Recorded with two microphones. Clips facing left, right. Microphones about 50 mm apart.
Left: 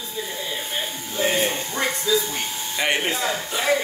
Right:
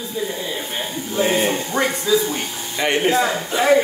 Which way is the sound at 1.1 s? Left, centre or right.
Right.